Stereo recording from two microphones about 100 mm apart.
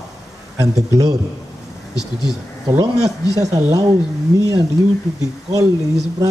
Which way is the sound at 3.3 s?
35° right (ahead or behind).